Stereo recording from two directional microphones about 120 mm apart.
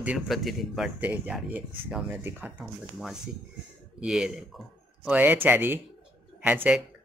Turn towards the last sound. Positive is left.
turn(degrees=-15)  # may be behind; listen again after turning